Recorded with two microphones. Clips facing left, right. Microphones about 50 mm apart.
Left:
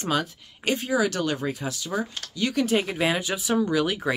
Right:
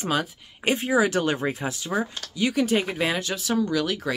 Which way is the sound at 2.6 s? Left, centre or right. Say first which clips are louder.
Even; centre.